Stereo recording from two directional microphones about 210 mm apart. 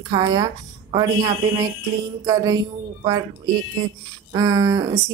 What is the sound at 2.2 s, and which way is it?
Speech, 15° right (ahead or behind).